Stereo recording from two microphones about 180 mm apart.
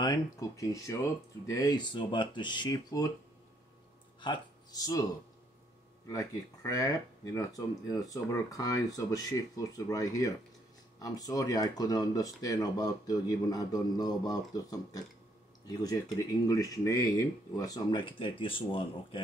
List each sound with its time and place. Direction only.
0.0 s speech: 20° left (ahead or behind)
4.2 s speech: 25° left (ahead or behind)
6.0 s speech: 20° left (ahead or behind)